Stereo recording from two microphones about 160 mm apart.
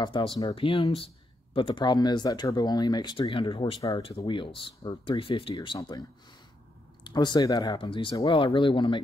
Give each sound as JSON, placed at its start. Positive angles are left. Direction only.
{"t": 0.0, "sound": "speech", "side_deg": 30}
{"t": 7.1, "sound": "speech", "side_deg": 25}